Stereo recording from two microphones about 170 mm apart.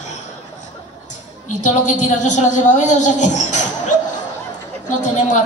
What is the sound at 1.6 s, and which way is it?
A woman's voice, 45° left (ahead or behind).